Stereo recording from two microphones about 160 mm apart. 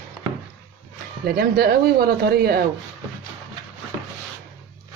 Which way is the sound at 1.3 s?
75° right (ahead or behind).